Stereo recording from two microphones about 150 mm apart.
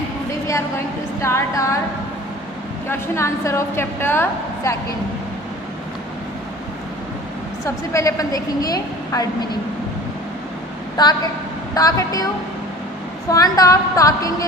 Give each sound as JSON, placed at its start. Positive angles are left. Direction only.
{"t": 1.2, "sound": "a woman's voice", "side_deg": 20}
{"t": 2.9, "sound": "a woman's voice", "side_deg": 20}
{"t": 7.6, "sound": "a woman's voice", "side_deg": 20}
{"t": 11.0, "sound": "a woman's voice", "side_deg": 30}
{"t": 13.3, "sound": "a woman's voice", "side_deg": 25}